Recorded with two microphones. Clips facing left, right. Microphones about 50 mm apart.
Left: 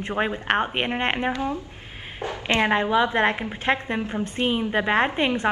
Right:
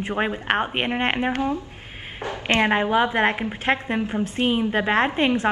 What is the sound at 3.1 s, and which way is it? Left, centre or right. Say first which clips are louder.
A woman's voice: right 1 dB; centre.